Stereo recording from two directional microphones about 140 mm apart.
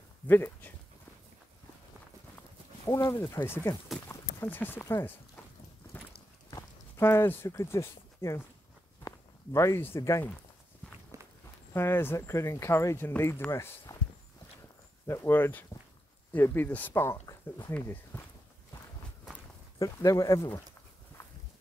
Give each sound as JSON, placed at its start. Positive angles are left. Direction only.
{"t": 0.3, "sound": "speech", "side_deg": 15}
{"t": 2.8, "sound": "speech", "side_deg": 25}
{"t": 7.0, "sound": "speech", "side_deg": 15}
{"t": 11.1, "sound": "walk", "side_deg": -25}
{"t": 11.7, "sound": "speech", "side_deg": 15}
{"t": 15.0, "sound": "speech", "side_deg": 20}
{"t": 19.8, "sound": "speech", "side_deg": 25}